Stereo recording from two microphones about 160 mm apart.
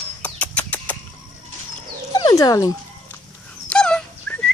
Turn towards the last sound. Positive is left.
turn(degrees=5)  # may be behind; listen again after turning